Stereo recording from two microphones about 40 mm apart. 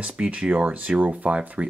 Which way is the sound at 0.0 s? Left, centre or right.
Right.